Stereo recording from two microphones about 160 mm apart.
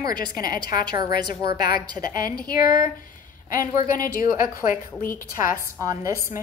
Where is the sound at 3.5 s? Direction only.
60° left (ahead or behind).